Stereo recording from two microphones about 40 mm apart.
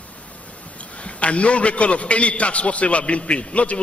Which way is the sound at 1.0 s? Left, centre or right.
Left.